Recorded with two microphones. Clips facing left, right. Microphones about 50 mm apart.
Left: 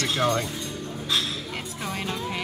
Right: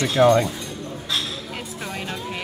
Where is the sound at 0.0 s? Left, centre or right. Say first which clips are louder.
Right 8 dB; centre.